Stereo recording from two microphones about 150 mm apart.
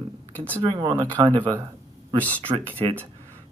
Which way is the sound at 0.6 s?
30° right (ahead or behind).